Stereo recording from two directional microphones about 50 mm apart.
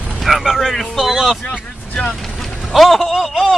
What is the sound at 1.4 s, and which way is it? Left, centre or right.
Vehicle, left.